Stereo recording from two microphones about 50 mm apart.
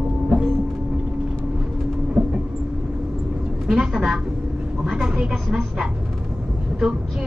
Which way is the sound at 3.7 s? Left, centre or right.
Centre.